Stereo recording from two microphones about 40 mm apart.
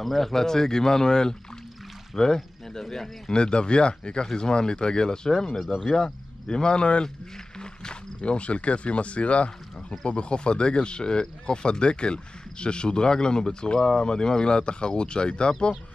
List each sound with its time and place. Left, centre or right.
0.0 s speech: centre; by 15.7 s left